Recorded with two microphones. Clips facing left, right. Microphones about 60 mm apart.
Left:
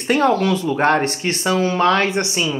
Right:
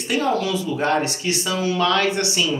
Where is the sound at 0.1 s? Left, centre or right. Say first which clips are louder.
Left 5 dB; left.